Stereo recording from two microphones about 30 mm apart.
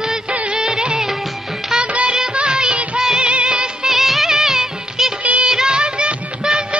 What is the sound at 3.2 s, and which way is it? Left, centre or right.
Music, right.